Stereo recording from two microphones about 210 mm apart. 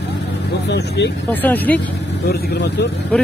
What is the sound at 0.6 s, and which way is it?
Speech, 55° left (ahead or behind).